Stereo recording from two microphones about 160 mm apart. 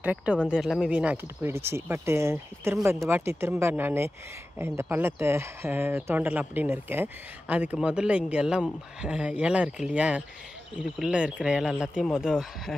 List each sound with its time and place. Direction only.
0.0 s speech: 10° right (ahead or behind)